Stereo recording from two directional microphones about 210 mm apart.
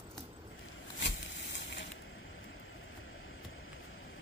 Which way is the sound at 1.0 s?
55° left (ahead or behind).